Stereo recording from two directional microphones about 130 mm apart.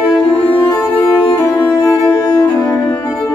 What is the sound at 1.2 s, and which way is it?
Music, 35° left (ahead or behind).